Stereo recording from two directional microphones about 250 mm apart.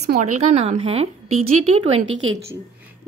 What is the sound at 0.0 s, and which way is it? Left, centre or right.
Speech, right.